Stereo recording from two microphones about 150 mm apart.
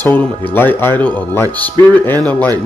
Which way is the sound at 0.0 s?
10° left (ahead or behind).